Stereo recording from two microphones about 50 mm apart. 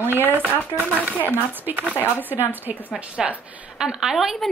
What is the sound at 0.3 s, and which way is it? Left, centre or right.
Speech, left.